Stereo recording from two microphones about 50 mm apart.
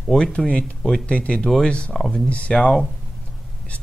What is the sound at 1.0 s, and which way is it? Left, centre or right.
Speech, left.